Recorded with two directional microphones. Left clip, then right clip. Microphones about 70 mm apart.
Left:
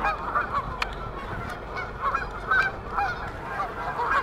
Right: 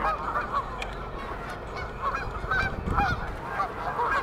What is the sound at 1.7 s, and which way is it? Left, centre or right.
Goose, left.